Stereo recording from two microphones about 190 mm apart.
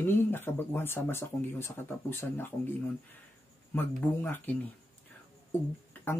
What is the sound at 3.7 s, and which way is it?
Speech, 10° left (ahead or behind).